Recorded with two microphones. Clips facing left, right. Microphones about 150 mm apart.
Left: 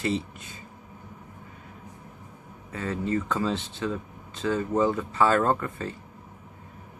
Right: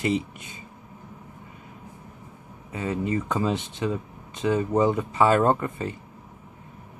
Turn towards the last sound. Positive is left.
turn(degrees=-15)  # may be behind; listen again after turning